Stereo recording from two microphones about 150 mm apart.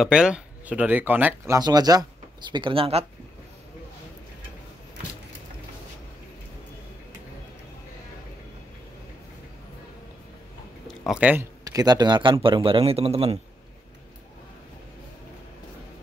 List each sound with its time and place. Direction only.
0.0 s speech: 5° right (ahead or behind); by 3.1 s 40° right (ahead or behind)
10.9 s speech: 5° right (ahead or behind)
11.6 s speech: 25° right (ahead or behind); by 13.4 s 40° right (ahead or behind)